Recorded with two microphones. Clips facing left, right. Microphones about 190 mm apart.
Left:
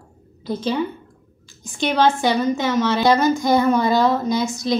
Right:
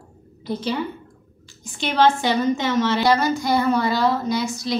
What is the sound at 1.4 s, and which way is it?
A woman's voice, 15° left (ahead or behind).